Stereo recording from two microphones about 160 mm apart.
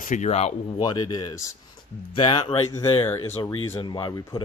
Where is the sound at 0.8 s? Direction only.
25° left (ahead or behind).